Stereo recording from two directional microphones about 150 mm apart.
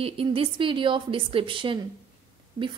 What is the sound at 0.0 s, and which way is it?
A woman's voice, 40° right (ahead or behind).